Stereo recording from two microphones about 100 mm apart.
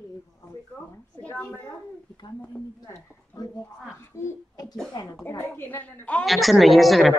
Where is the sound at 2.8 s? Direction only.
35° left (ahead or behind).